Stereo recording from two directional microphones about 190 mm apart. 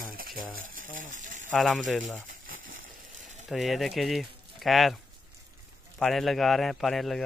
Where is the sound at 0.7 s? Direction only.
45° right (ahead or behind).